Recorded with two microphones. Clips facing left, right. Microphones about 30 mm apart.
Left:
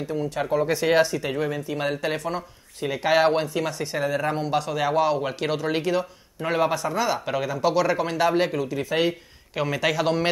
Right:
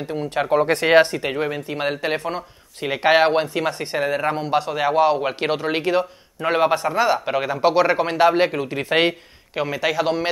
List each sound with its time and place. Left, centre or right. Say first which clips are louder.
0.0 s speech: right 3 dB; right
2.8 s speech: right 4 dB; right; by 7.4 s centre
7.4 s speech: right 4 dB; right
8.5 s speech: right 3 dB; right
9.6 s a man's voice: right 2 dB; centre